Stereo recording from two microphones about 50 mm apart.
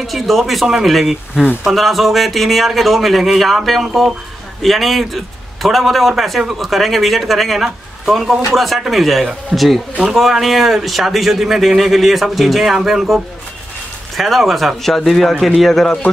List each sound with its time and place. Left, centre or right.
0.0 s speech: centre
9.5 s speech: centre
10.1 s speech: centre